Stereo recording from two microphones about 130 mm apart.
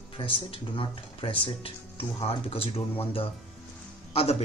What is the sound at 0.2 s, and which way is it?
Speech, 40° left (ahead or behind).